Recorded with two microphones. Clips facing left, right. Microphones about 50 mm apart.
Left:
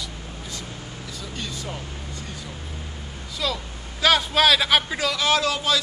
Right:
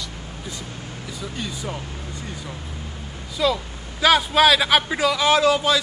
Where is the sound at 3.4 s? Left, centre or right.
Centre.